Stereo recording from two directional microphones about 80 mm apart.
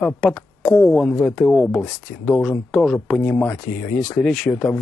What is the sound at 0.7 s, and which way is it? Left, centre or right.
Speech, centre.